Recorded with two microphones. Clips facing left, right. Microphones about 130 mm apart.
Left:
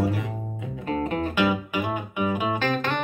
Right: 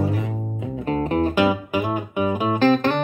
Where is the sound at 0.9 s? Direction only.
40° right (ahead or behind).